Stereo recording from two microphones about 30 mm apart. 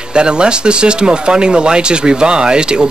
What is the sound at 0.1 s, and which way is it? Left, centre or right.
Speech, right.